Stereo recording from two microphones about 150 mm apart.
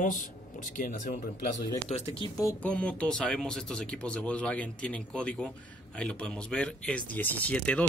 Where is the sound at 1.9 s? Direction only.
45° left (ahead or behind).